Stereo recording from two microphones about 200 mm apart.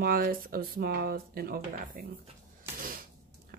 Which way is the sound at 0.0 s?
45° right (ahead or behind).